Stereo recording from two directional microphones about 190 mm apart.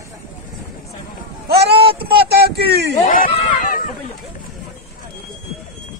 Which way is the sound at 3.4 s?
45° left (ahead or behind).